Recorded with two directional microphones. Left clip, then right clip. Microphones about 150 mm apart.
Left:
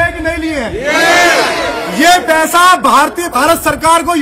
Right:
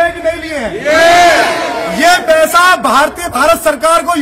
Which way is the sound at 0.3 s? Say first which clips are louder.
Even; 15° right (ahead or behind).